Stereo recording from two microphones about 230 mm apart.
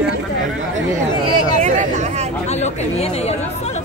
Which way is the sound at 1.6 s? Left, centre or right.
Right.